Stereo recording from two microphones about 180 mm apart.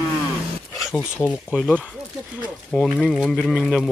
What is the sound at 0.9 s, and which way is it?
Speech, 10° left (ahead or behind).